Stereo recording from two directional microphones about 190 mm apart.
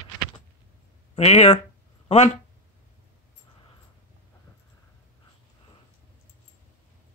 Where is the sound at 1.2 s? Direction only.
30° left (ahead or behind).